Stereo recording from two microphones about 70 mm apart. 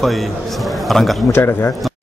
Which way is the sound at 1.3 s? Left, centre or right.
Left.